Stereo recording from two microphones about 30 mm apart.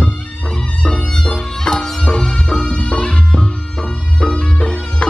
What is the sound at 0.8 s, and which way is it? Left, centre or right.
Music, left.